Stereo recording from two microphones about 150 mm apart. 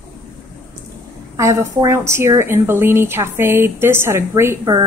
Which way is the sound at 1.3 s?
20° right (ahead or behind).